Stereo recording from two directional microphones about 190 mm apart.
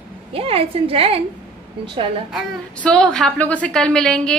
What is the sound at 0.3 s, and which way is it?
A woman's voice, 30° right (ahead or behind).